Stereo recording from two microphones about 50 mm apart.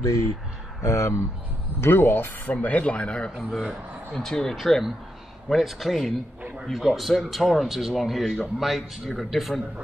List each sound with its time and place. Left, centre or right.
0.8 s speech: left
1.8 s speech: left
2.5 s speech: left
4.1 s speech: centre